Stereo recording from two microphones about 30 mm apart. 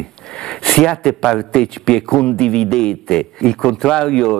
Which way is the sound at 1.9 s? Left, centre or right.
Left.